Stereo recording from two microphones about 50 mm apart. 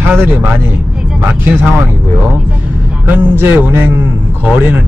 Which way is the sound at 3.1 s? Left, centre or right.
Right.